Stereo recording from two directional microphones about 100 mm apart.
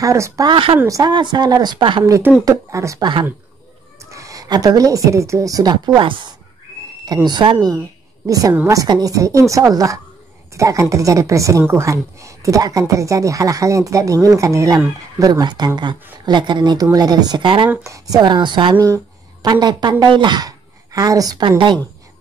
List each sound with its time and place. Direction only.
0.0 s a woman's voice: 30° right (ahead or behind)
0.5 s speech: 65° right (ahead or behind)
0.8 s a woman's voice: 35° right (ahead or behind)
1.1 s speech: 45° right (ahead or behind)
2.4 s a woman's voice: 35° right (ahead or behind)
3.0 s speech: 50° right (ahead or behind)
4.1 s a woman's voice: 35° right (ahead or behind)
8.3 s a woman's voice: 35° right (ahead or behind)
8.8 s speech: 50° right (ahead or behind)
9.1 s a woman's voice: 35° right (ahead or behind)
15.4 s speech: 45° right (ahead or behind)
17.8 s a woman's voice: 35° right (ahead or behind); by 21.8 s 50° right (ahead or behind)